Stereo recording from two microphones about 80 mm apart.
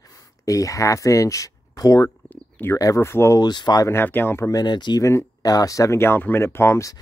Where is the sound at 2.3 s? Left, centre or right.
Left.